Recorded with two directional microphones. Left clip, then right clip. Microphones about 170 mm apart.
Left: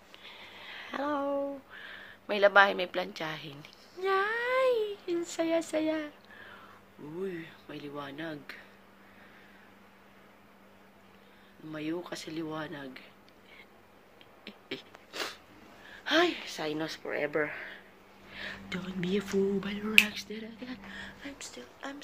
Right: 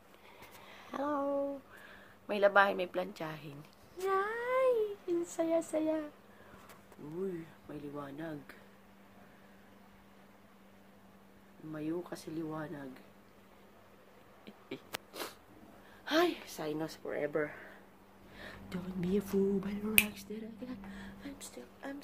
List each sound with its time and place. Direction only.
0.2 s a sound: 5° right (ahead or behind)
1.9 s a woman's voice: centre (ahead or behind)
4.0 s child singing: centre (ahead or behind)
7.7 s speech: centre (ahead or behind)
11.7 s speech: centre (ahead or behind)
14.9 s sneeze: 75° right (ahead or behind)
16.0 s speech: centre (ahead or behind)
17.0 s speech: 10° left (ahead or behind)
18.3 s speech: 5° right (ahead or behind)